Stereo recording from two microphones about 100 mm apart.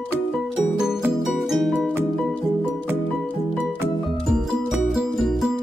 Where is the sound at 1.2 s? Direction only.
Centre (ahead or behind).